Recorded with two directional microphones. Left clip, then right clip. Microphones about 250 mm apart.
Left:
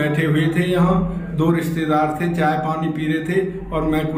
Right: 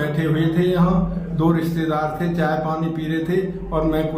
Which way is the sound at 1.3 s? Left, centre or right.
Right.